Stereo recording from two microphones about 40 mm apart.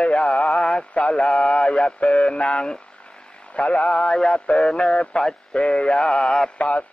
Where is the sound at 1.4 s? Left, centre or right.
Left.